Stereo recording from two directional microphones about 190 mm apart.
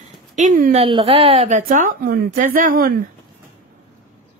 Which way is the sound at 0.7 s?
30° right (ahead or behind).